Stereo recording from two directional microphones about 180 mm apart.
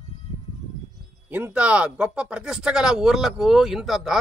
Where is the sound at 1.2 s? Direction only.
10° right (ahead or behind).